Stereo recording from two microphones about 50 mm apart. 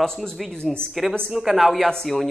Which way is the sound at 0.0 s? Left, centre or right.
Centre.